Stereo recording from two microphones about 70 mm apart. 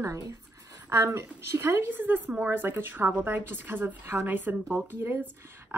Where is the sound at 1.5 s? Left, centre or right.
Right.